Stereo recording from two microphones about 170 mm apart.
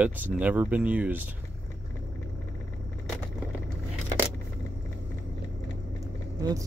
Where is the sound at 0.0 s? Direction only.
10° right (ahead or behind).